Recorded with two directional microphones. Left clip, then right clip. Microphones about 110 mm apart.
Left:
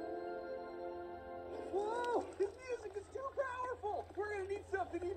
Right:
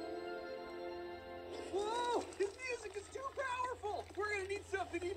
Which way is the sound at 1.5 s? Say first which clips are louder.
Even; 20° left (ahead or behind).